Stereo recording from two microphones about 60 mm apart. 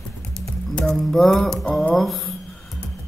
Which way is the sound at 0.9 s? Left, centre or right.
Centre.